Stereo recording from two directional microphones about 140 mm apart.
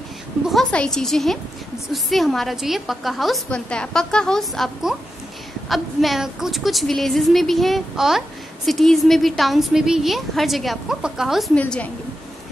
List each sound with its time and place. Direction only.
0.5 s a woman's voice: 5° left (ahead or behind)
11.5 s a woman's voice: 10° left (ahead or behind)